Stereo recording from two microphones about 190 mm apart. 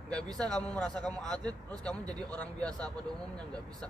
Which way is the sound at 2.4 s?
5° left (ahead or behind).